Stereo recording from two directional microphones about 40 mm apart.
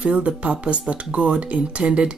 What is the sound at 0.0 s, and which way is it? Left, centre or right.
Speech, right.